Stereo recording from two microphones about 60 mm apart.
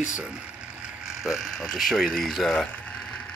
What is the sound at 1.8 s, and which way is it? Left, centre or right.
Speech, centre.